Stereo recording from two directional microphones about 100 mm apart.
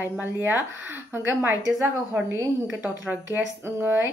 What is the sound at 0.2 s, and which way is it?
Speech, 20° right (ahead or behind).